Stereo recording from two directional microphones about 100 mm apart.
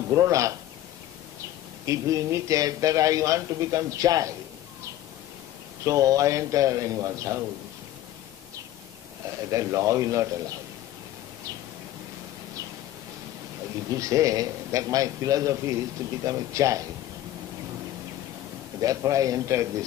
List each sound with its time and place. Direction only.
0.1 s speech: 35° right (ahead or behind)
1.9 s speech: 35° right (ahead or behind)
5.9 s speech: 35° right (ahead or behind)
9.5 s speech: 30° right (ahead or behind)
13.8 s speech: 35° right (ahead or behind)
18.8 s speech: 35° right (ahead or behind)